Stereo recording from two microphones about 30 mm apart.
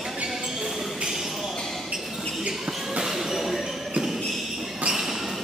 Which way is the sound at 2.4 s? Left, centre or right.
Right.